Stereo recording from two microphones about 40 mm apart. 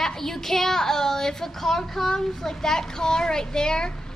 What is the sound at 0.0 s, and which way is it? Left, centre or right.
A woman's voice, centre.